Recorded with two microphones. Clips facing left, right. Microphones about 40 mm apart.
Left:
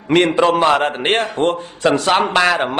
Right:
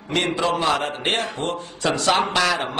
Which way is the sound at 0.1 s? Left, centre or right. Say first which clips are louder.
Left 8 dB; left.